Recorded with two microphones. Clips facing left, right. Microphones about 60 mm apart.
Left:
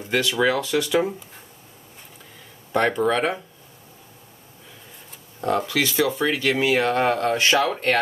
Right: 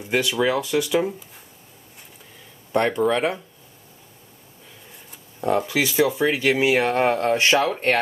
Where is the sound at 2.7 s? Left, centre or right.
Centre.